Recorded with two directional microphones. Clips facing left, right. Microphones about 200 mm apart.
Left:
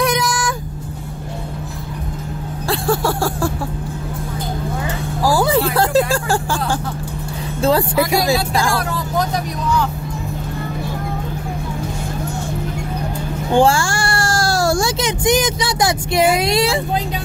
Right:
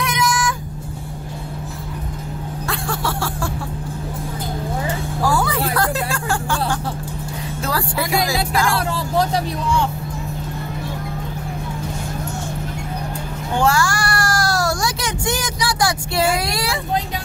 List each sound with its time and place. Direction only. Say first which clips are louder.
0.0 s vehicle: left 3 dB; 35° left (ahead or behind)
2.7 s a sound: left 8 dB; 40° left (ahead or behind)
5.2 s speech: left 5 dB; 30° left (ahead or behind)
13.6 s speech: left 4 dB; 30° left (ahead or behind)